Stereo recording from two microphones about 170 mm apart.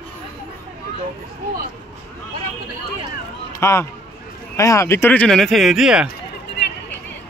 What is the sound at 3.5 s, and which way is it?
Speech, 15° left (ahead or behind).